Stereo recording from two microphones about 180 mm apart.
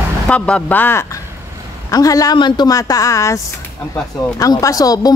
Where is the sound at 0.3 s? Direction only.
5° left (ahead or behind).